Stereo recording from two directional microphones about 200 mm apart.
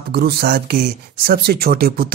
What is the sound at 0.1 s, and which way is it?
Speech, 50° right (ahead or behind).